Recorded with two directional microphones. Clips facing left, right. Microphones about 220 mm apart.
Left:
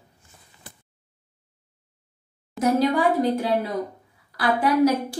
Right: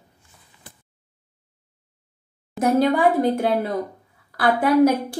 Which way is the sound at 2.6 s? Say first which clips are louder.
Right 1 dB; centre (ahead or behind).